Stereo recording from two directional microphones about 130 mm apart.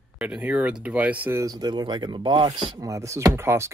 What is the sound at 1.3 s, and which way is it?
Speech, 30° right (ahead or behind).